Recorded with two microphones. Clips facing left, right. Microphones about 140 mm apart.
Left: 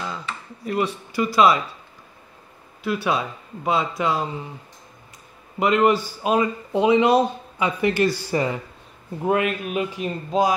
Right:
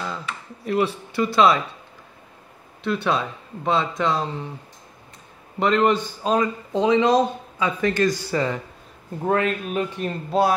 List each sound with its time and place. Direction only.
0.7 s speech: centre (ahead or behind)
2.8 s speech: 5° left (ahead or behind)
5.6 s speech: 5° left (ahead or behind)